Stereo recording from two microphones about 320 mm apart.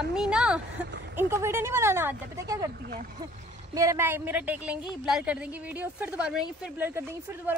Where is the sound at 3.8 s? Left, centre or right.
Centre.